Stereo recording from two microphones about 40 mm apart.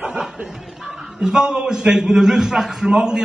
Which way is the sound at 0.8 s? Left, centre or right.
Centre.